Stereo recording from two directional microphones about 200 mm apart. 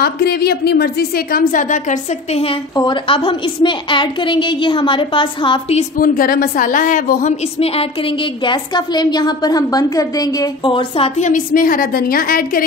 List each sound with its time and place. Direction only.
0.0 s a woman's voice: 50° left (ahead or behind); by 2.5 s 35° left (ahead or behind)
2.7 s a woman's voice: 25° left (ahead or behind)
5.9 s a woman's voice: 45° left (ahead or behind)
7.5 s a woman's voice: 30° left (ahead or behind); by 12.6 s 45° left (ahead or behind)